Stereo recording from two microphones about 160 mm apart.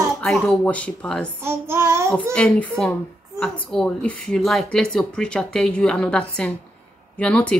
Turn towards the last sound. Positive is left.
turn(degrees=5)  # may be behind; listen again after turning